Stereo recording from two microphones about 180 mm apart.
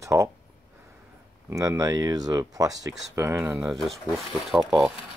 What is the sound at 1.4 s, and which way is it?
Speech, 15° right (ahead or behind).